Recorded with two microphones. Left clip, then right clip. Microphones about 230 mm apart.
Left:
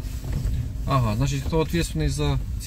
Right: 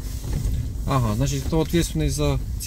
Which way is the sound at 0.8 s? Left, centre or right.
Centre.